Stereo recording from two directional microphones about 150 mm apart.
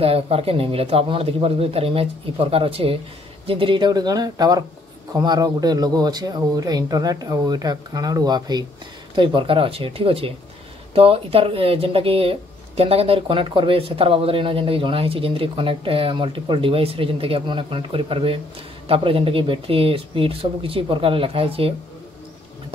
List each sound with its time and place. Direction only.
0.0 s speech: 40° right (ahead or behind)